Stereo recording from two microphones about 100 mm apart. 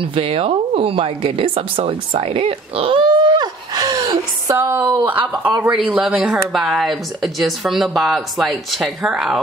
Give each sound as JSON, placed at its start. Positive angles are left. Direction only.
{"t": 0.0, "sound": "speech", "side_deg": -70}
{"t": 3.1, "sound": "a sound", "side_deg": -50}
{"t": 4.6, "sound": "speech", "side_deg": -25}
{"t": 5.6, "sound": "speech", "side_deg": -10}